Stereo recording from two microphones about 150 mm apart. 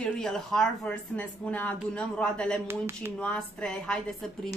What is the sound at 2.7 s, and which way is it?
Speech, 15° right (ahead or behind).